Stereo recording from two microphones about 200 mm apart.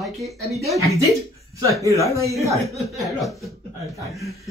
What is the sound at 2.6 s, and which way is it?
Speech, centre (ahead or behind).